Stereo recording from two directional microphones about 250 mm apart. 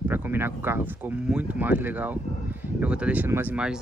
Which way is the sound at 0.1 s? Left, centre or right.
Centre.